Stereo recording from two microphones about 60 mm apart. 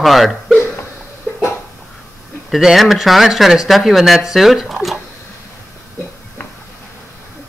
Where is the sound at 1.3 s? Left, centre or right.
Left.